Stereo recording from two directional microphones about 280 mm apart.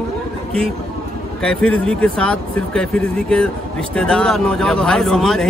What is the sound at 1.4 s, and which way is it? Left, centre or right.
A man's voice, centre.